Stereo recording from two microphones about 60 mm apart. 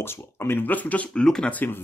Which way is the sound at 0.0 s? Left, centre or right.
Left.